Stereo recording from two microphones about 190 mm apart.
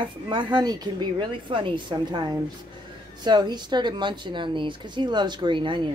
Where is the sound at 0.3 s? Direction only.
25° right (ahead or behind).